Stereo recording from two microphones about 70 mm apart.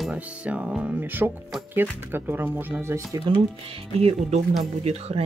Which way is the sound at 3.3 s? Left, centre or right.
Right.